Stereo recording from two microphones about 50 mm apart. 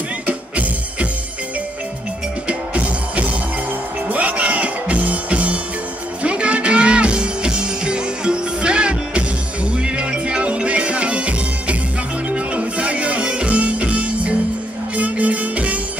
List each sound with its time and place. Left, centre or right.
0.3 s music: right
2.4 s music: right